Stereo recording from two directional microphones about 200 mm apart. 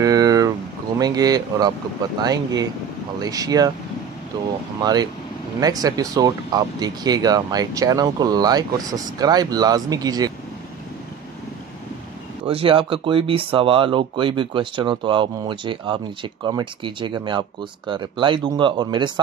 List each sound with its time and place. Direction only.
0.0 s a sound: 15° right (ahead or behind)
0.9 s speech: 20° right (ahead or behind)
5.6 s speech: 20° right (ahead or behind)
12.4 s speech: 25° right (ahead or behind)